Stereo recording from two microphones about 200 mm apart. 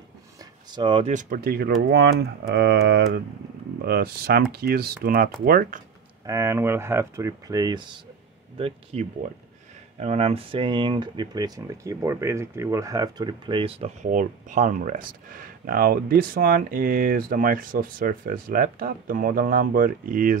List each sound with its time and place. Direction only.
0.7 s speech: 25° right (ahead or behind)
1.1 s speech: 50° right (ahead or behind)
6.2 s speech: 15° right (ahead or behind); by 20.3 s 45° right (ahead or behind)